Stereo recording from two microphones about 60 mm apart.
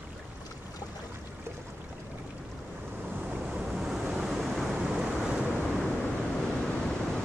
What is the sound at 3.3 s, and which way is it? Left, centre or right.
Waves, centre.